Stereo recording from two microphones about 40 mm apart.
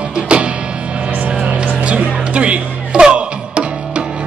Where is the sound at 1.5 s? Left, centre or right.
Right.